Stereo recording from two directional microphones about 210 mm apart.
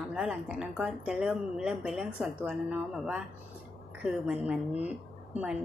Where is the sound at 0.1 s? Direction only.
5° right (ahead or behind).